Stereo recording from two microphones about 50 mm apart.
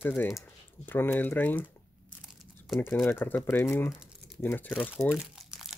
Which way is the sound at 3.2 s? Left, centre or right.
Left.